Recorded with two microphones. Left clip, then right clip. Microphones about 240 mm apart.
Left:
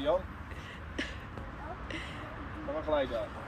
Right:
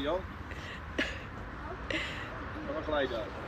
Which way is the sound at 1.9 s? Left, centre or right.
Centre.